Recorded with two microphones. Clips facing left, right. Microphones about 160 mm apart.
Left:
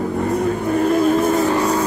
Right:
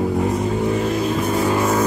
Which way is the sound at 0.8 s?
45° left (ahead or behind).